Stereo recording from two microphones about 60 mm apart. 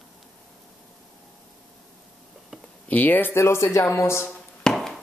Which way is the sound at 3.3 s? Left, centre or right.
Left.